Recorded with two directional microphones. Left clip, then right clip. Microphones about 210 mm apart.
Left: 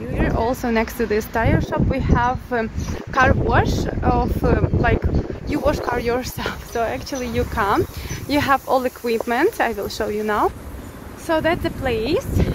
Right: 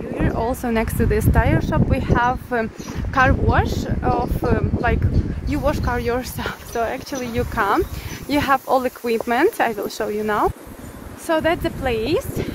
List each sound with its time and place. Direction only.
0.1 s speech: centre (ahead or behind)